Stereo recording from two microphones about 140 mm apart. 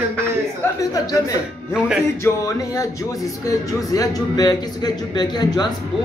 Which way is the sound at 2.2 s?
25° left (ahead or behind).